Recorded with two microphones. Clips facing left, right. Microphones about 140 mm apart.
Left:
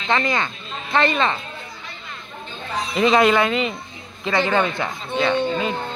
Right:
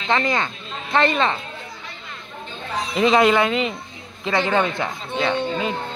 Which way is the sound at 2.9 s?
20° right (ahead or behind).